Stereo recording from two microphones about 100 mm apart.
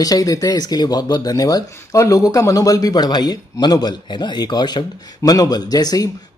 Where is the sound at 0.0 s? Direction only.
35° left (ahead or behind).